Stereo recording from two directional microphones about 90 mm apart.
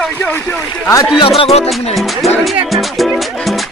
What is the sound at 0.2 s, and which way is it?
Speech, 25° left (ahead or behind).